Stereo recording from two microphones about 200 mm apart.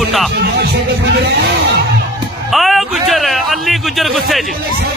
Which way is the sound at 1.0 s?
55° right (ahead or behind).